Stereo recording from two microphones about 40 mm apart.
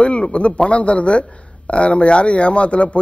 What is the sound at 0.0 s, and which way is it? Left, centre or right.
Speech, left.